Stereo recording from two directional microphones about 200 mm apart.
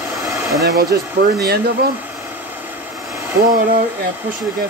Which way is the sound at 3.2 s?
15° right (ahead or behind).